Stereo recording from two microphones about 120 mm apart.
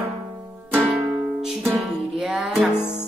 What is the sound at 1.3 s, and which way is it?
Music, 5° right (ahead or behind).